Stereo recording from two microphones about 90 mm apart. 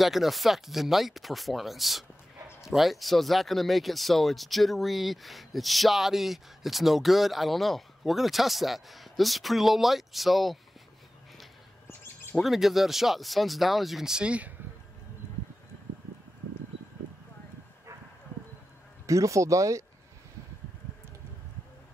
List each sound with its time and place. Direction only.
0.0 s speech: centre (ahead or behind)
12.4 s speech: centre (ahead or behind)
19.0 s speech: 35° right (ahead or behind)